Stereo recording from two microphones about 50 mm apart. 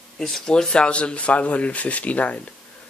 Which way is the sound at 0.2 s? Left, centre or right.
Centre.